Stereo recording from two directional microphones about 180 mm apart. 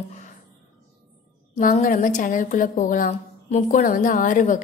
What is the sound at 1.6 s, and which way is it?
A woman's voice, 50° left (ahead or behind).